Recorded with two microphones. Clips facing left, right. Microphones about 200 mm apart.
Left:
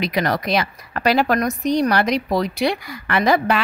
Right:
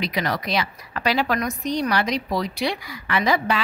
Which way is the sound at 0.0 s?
55° left (ahead or behind).